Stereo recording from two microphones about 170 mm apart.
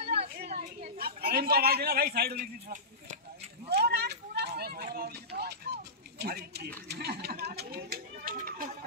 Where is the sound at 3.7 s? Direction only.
75° right (ahead or behind).